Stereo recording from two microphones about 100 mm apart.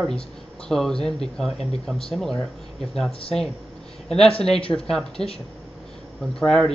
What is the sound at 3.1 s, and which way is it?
Speech, 65° left (ahead or behind).